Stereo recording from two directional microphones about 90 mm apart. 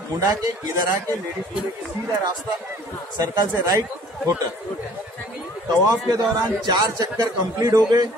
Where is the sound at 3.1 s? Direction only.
45° right (ahead or behind).